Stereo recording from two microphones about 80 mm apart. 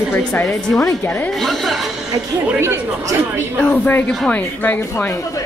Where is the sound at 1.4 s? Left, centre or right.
Centre.